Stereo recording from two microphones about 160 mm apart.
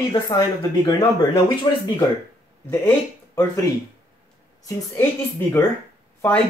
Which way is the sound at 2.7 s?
15° left (ahead or behind).